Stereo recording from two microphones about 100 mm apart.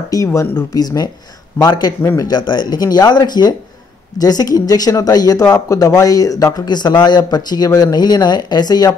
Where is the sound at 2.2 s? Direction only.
45° left (ahead or behind).